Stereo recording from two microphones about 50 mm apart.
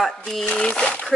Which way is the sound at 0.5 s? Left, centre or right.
Centre.